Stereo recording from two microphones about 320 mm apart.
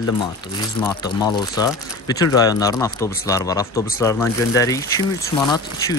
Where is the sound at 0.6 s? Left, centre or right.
Centre.